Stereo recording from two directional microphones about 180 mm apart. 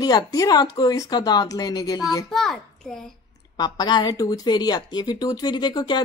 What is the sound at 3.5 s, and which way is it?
Speech, 20° left (ahead or behind).